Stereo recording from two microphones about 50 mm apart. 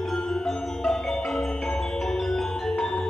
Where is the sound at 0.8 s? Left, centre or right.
Centre.